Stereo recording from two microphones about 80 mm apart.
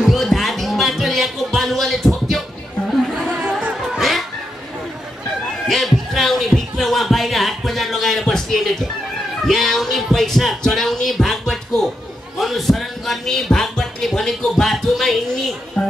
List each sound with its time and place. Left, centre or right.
0.0 s music: centre
3.9 s music: centre
5.7 s heart sounds: centre
9.5 s music: centre